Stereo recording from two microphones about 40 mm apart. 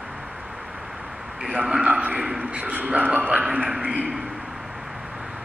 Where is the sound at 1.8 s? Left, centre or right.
Right.